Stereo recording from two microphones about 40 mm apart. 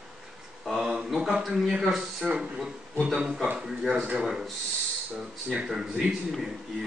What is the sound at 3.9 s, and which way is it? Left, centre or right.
Speech, right.